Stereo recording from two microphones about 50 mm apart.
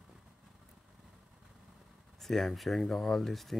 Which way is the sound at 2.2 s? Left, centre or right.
Centre.